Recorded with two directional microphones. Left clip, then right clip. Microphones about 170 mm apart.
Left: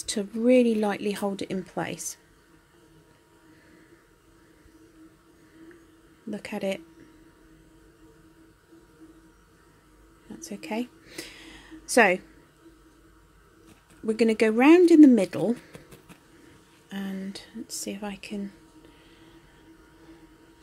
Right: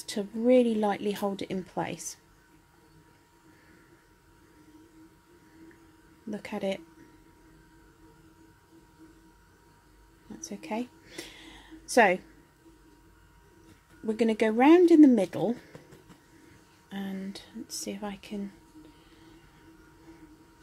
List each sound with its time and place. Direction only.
0.0 s speech: 15° left (ahead or behind)
6.3 s speech: 10° left (ahead or behind)
10.4 s a sound: 10° left (ahead or behind)
14.0 s speech: 10° left (ahead or behind)
16.9 s speech: 10° left (ahead or behind)